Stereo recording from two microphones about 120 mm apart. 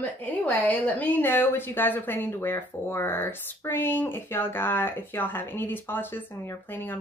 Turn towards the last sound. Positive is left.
turn(degrees=15)  # may be behind; listen again after turning